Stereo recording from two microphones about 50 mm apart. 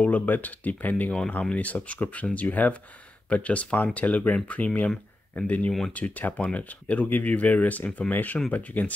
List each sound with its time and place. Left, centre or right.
0.0 s speech: left